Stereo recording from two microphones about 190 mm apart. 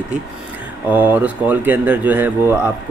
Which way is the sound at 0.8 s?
10° right (ahead or behind).